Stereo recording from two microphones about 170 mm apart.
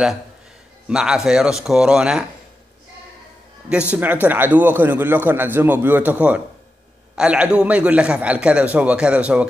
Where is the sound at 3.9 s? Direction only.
10° right (ahead or behind).